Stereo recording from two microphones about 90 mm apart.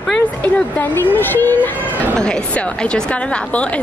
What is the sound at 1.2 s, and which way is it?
Speech, 20° left (ahead or behind).